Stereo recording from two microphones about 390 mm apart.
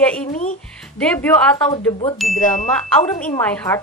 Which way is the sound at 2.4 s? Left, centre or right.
Centre.